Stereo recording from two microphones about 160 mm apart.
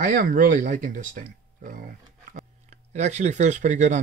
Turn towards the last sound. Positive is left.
turn(degrees=-50)  # may be behind; listen again after turning